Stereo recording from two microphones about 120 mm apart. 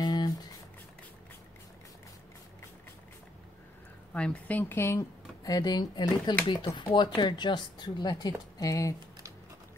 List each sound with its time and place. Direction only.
0.0 s music: 35° left (ahead or behind)
4.1 s speech: 10° left (ahead or behind); by 6.3 s 35° left (ahead or behind)
6.4 s speech: 50° left (ahead or behind); by 8.9 s 30° left (ahead or behind)